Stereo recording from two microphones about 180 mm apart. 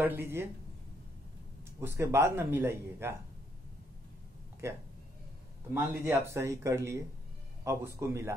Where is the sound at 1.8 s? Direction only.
15° right (ahead or behind).